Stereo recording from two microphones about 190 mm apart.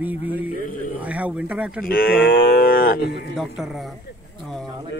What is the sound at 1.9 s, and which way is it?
Cattle, 50° left (ahead or behind).